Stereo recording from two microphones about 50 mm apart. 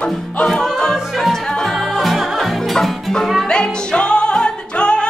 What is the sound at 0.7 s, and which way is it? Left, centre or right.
Music, centre.